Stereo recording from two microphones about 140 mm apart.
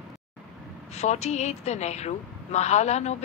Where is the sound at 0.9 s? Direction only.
50° left (ahead or behind).